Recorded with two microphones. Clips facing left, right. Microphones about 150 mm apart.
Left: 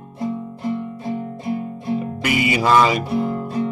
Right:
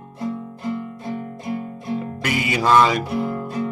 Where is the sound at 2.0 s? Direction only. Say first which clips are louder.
Left 3 dB; 10° left (ahead or behind).